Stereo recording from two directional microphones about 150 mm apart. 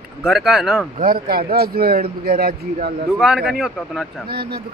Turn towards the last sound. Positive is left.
turn(degrees=-90)